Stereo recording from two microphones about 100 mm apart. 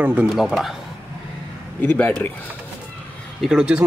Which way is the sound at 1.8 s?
20° left (ahead or behind).